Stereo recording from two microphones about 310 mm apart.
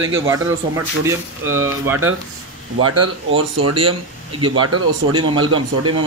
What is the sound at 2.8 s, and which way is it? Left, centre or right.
Speech, right.